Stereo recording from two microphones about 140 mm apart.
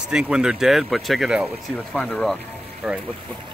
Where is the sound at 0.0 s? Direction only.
5° right (ahead or behind).